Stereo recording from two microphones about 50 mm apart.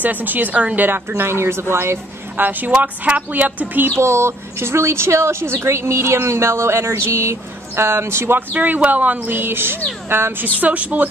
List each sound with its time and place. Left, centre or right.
0.0 s speech: right
0.8 s speech: right
2.3 s speech: right
2.7 s speech: right
4.0 s speech: right
8.5 s speech: right
10.6 s speech: right